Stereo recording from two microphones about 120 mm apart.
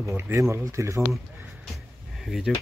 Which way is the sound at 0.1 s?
20° right (ahead or behind).